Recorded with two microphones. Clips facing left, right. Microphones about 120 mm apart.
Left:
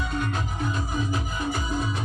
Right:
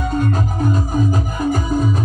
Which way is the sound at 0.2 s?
40° right (ahead or behind).